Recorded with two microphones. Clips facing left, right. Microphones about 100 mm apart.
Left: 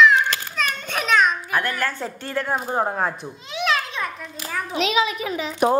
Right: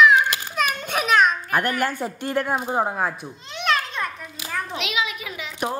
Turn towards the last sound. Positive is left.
turn(degrees=35)  # may be behind; listen again after turning